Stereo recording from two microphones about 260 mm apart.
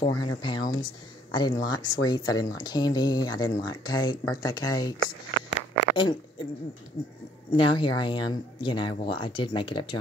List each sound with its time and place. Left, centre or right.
0.0 s speech: centre
5.9 s speech: centre
7.5 s speech: centre